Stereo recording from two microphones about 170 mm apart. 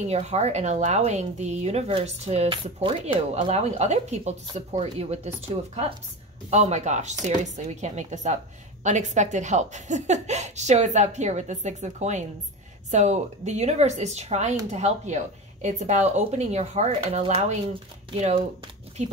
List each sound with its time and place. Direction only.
0.1 s speech: 40° right (ahead or behind)
6.5 s speech: 40° right (ahead or behind)